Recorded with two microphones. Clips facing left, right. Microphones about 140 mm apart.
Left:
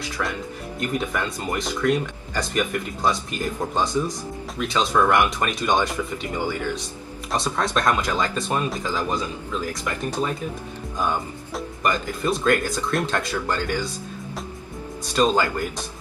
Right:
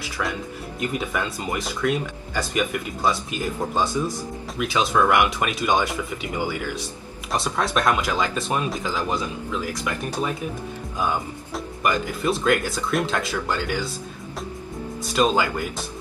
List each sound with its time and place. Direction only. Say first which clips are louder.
0.2 s speech: right 1 dB; centre (ahead or behind)
15.1 s speech: left 1 dB; 5° right (ahead or behind)